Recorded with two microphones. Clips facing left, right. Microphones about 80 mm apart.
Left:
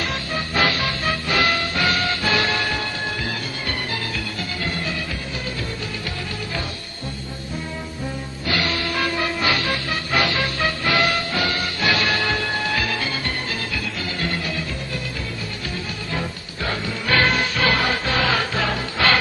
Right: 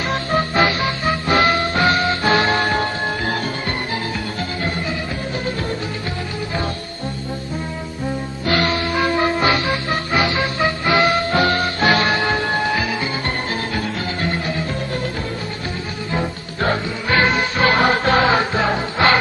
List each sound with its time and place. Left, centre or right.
0.4 s music: right
8.5 s music: right
8.7 s music: right
16.6 s music: right